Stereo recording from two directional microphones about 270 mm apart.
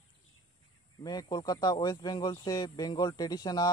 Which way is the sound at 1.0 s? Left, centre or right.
Centre.